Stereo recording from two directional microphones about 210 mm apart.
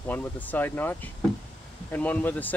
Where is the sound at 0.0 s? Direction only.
10° left (ahead or behind).